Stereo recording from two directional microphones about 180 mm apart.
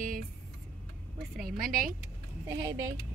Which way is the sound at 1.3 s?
Centre (ahead or behind).